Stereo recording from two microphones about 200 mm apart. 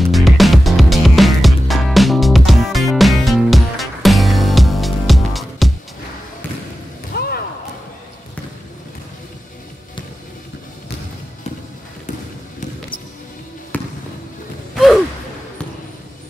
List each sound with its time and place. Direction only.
0.0 s music: centre (ahead or behind)
7.2 s slam: 50° left (ahead or behind)
13.7 s fireworks: 10° left (ahead or behind)